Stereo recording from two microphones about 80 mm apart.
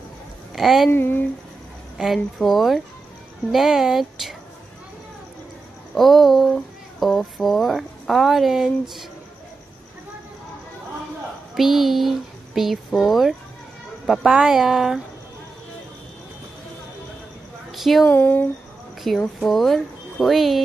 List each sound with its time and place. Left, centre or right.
0.6 s speech: centre
0.9 s speech: left
2.0 s speech: centre
5.9 s speech: centre
11.5 s speech: centre
17.6 s a woman's voice: centre
18.0 s speech: left
19.0 s speech: centre